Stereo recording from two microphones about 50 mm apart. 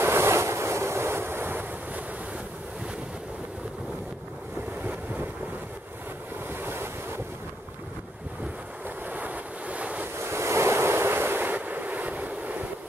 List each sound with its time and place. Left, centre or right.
0.0 s waves: right
6.5 s waves: right
8.8 s waves: right
10.1 s waves: right